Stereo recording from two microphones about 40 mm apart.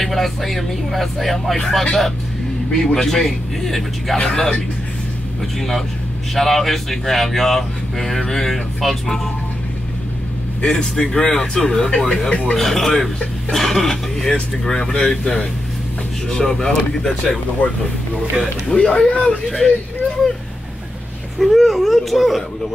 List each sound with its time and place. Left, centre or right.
0.0 s speech: centre
5.6 s speech: centre
10.6 s a man's voice: centre
12.3 s a man's voice: left
12.5 s speech: centre
17.6 s speech: left
18.7 s a man's voice: left
19.4 s speech: centre
21.4 s speech: centre